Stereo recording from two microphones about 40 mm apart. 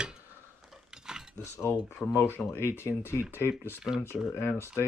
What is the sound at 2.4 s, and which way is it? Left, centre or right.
Speech, left.